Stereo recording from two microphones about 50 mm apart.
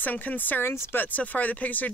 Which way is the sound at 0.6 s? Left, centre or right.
Left.